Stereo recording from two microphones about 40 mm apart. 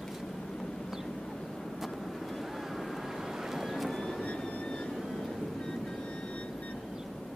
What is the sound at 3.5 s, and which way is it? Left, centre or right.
Vehicle, centre.